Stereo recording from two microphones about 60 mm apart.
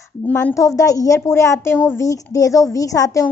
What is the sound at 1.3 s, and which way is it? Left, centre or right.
Speech, left.